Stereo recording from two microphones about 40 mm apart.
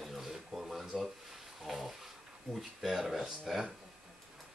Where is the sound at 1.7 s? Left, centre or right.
Centre.